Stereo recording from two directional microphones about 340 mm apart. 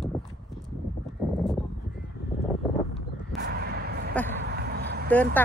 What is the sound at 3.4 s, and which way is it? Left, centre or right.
Artillery fire, right.